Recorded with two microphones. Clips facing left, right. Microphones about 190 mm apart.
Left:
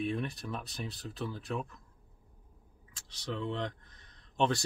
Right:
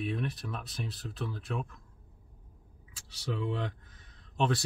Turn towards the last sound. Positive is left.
turn(degrees=-5)  # may be behind; listen again after turning